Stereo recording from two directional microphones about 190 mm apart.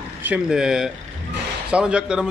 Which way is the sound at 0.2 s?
5° right (ahead or behind).